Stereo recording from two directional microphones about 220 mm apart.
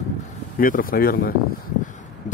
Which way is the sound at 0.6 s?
40° left (ahead or behind).